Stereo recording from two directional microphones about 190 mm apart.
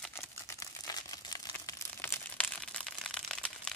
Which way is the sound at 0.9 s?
20° left (ahead or behind).